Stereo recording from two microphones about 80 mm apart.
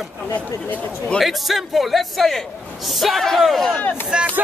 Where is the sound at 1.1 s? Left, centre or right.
Centre.